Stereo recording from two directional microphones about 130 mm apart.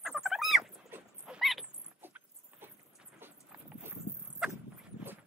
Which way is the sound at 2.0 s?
15° right (ahead or behind).